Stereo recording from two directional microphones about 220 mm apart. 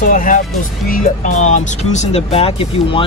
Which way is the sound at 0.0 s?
35° left (ahead or behind).